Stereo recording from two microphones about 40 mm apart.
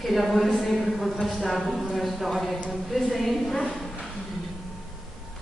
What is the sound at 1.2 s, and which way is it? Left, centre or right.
A woman's voice, centre.